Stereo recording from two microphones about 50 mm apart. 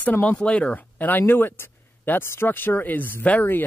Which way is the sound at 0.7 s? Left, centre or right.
Left.